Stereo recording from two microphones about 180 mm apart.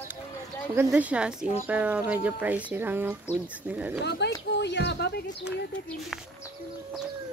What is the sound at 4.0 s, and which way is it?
Speech, 70° left (ahead or behind).